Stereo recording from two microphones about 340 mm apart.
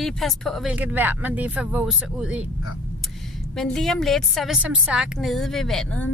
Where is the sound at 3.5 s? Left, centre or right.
Centre.